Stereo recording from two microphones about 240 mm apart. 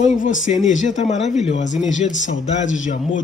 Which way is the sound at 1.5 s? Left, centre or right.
Left.